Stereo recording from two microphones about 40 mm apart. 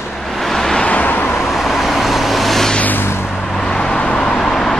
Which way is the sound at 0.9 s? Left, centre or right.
Left.